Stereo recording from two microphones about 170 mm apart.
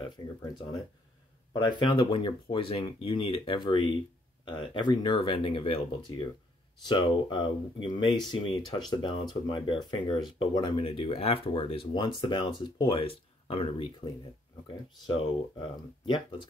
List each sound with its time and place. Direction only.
0.2 s speech: 25° left (ahead or behind)
1.5 s speech: 25° left (ahead or behind)
16.1 s speech: 25° left (ahead or behind)